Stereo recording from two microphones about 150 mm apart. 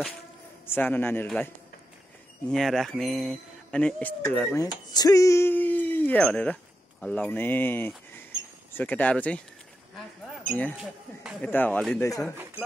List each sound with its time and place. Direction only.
0.7 s speech: 15° left (ahead or behind)
2.5 s speech: centre (ahead or behind)
4.6 s speech: 25° left (ahead or behind); by 9.4 s 10° left (ahead or behind)
10.5 s speech: 10° left (ahead or behind)